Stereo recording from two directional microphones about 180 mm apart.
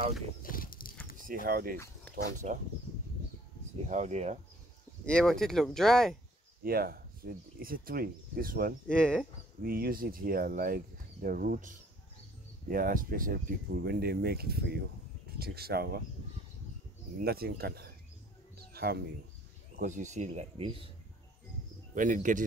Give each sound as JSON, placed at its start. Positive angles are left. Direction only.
{"t": 0.4, "sound": "a sound", "side_deg": 50}
{"t": 1.2, "sound": "speech", "side_deg": -50}
{"t": 2.4, "sound": "speech", "side_deg": -40}
{"t": 3.8, "sound": "speech", "side_deg": -40}
{"t": 5.0, "sound": "speech", "side_deg": 5}
{"t": 6.6, "sound": "speech", "side_deg": -55}
{"t": 8.8, "sound": "speech", "side_deg": 5}
{"t": 9.6, "sound": "speech", "side_deg": -55}
{"t": 17.2, "sound": "speech", "side_deg": -60}
{"t": 19.8, "sound": "speech", "side_deg": -45}
{"t": 21.9, "sound": "speech", "side_deg": -45}